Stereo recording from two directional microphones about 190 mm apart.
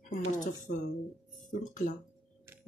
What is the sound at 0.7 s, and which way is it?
Speech, 75° left (ahead or behind).